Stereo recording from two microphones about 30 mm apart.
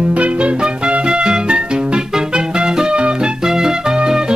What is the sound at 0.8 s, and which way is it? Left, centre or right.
Music, right.